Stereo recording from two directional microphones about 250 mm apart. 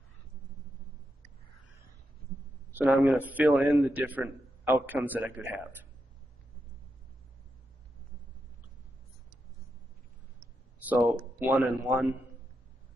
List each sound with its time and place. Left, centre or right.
2.7 s a man's voice: centre
10.8 s a man's voice: centre